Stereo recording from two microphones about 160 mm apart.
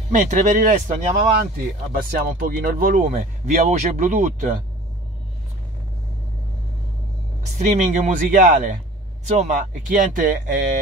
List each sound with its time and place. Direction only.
0.1 s speech: 50° right (ahead or behind)
1.4 s speech: 65° right (ahead or behind); by 4.6 s 50° right (ahead or behind)
7.4 s speech: 50° right (ahead or behind)